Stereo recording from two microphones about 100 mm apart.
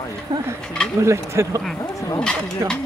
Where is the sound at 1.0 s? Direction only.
25° right (ahead or behind).